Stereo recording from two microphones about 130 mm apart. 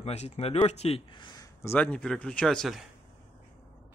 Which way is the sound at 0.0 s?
55° left (ahead or behind).